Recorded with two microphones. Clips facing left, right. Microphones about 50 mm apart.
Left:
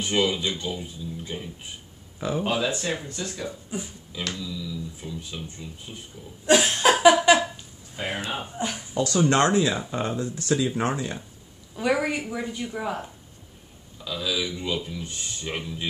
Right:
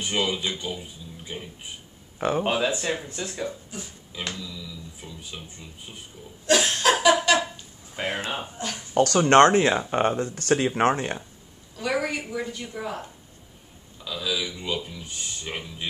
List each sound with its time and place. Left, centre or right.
0.0 s speech: centre
2.1 s speech: right
2.4 s speech: right
4.4 s speech: centre
6.4 s laughter: centre
7.9 s speech: right
8.5 s speech: centre
8.9 s speech: right
11.7 s a woman's voice: centre
14.0 s speech: centre